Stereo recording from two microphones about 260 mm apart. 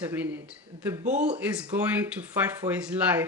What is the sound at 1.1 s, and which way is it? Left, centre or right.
Speech, right.